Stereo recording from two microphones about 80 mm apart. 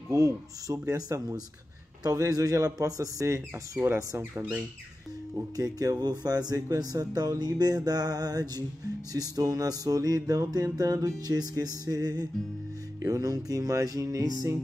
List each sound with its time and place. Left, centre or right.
0.1 s music: right
4.2 s speech: right
5.6 s speech: right
9.3 s music: right